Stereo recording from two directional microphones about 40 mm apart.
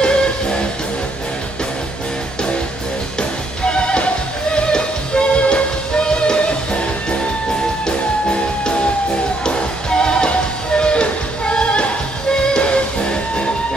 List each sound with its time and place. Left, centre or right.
0.0 s music: left
3.2 s music: left